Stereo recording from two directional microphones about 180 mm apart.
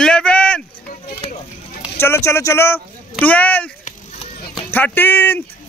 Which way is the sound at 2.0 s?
15° left (ahead or behind).